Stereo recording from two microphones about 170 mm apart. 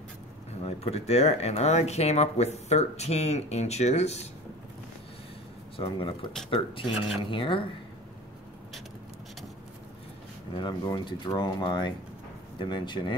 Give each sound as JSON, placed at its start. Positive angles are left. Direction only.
{"t": 0.7, "sound": "speech", "side_deg": 35}
{"t": 5.8, "sound": "speech", "side_deg": 30}
{"t": 10.5, "sound": "speech", "side_deg": 25}